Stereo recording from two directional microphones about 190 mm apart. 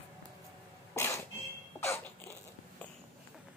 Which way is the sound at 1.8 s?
15° left (ahead or behind).